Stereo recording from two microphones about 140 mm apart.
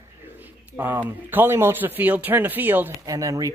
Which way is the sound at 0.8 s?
15° right (ahead or behind).